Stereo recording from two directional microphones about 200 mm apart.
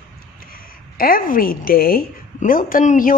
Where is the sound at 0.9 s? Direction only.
45° left (ahead or behind).